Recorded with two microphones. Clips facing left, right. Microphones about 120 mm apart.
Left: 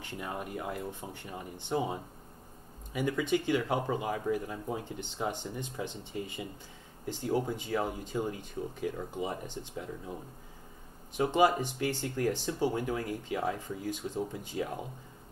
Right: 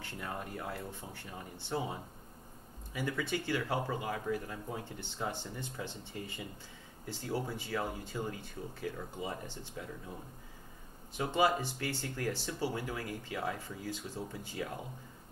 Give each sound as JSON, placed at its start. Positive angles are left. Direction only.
{"t": 0.0, "sound": "speech", "side_deg": 15}
{"t": 11.1, "sound": "speech", "side_deg": 15}